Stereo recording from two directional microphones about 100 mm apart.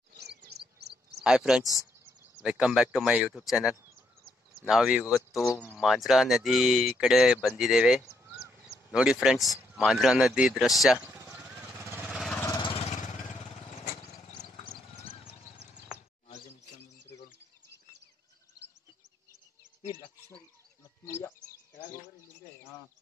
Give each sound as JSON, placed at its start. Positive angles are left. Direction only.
{"t": 1.2, "sound": "speech", "side_deg": -5}
{"t": 5.1, "sound": "speech", "side_deg": 0}
{"t": 11.0, "sound": "a sound", "side_deg": -20}
{"t": 11.3, "sound": "vehicle", "side_deg": -10}
{"t": 12.6, "sound": "vehicle", "side_deg": 70}
{"t": 20.0, "sound": "a sound", "side_deg": 15}
{"t": 21.0, "sound": "bird", "side_deg": 25}